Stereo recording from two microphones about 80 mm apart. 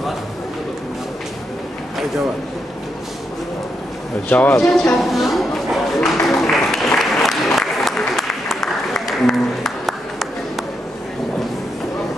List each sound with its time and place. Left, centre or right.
4.3 s speech: centre
4.6 s a sound: centre
6.5 s applause: centre